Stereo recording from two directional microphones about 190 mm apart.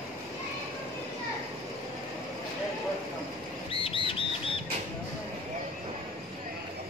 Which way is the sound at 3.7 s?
30° left (ahead or behind).